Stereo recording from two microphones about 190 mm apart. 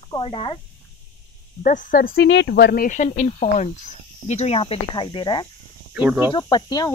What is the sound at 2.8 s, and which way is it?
Speech, 40° left (ahead or behind).